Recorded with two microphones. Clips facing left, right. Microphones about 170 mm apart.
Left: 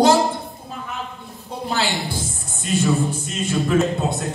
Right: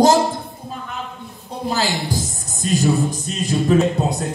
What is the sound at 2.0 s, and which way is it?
Music, 40° right (ahead or behind).